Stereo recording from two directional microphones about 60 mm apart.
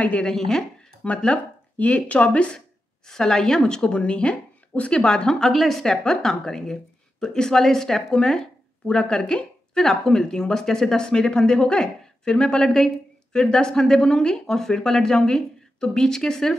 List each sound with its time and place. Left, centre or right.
0.0 s speech: left
0.3 s a woman's voice: centre
3.1 s a woman's voice: centre